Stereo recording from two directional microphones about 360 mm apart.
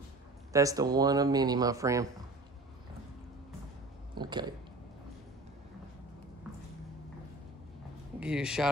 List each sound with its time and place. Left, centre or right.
0.5 s speech: centre
4.1 s a sound: centre
8.2 s speech: centre